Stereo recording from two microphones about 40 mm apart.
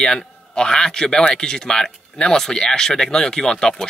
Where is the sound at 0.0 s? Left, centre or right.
Centre.